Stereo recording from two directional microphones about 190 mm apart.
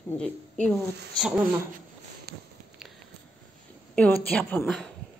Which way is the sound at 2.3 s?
55° right (ahead or behind).